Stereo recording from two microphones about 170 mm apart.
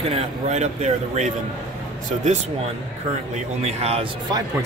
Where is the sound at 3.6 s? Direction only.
40° right (ahead or behind).